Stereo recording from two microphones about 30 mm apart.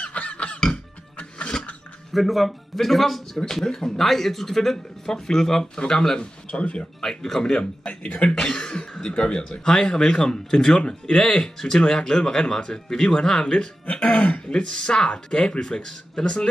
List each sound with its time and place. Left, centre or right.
0.0 s music: left
1.4 s mechanisms: left
2.1 s speech: centre; by 6.6 s left
6.6 s speech: left
7.0 s speech: centre
7.8 s speech: left
8.3 s cough: left
9.1 s speech: left
9.8 s speech: left
14.0 s speech: left